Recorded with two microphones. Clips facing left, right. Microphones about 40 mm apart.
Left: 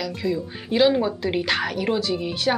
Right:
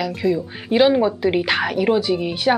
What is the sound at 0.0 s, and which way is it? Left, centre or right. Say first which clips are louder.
Speech: right 5 dB; centre.